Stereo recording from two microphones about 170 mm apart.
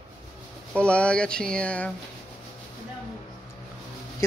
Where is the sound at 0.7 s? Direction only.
5° left (ahead or behind).